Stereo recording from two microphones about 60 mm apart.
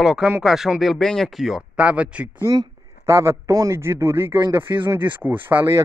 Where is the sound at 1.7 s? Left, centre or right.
Right.